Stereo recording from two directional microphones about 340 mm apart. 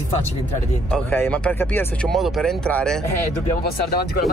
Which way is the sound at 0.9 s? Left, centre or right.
Centre.